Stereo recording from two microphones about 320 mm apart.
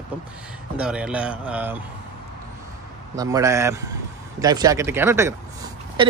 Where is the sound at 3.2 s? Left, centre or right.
Centre.